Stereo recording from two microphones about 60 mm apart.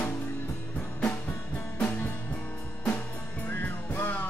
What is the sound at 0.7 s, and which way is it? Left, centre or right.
Music, left.